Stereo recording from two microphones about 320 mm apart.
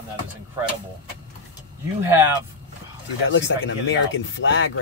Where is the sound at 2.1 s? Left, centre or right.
Centre.